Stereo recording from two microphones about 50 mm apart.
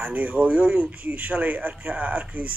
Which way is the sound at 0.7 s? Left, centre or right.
Right.